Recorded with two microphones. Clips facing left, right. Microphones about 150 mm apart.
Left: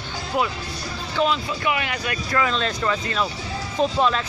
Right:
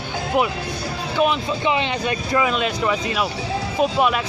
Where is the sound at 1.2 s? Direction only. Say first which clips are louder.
Right 2 dB; 20° right (ahead or behind).